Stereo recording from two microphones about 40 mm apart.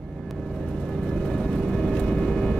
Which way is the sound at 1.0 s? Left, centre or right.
Centre.